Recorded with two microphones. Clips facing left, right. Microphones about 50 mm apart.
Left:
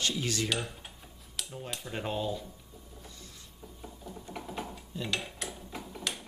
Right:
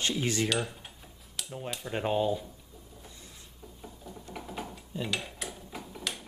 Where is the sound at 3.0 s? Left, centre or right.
Centre.